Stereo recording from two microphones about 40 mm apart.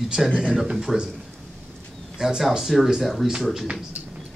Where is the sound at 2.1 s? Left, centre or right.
Centre.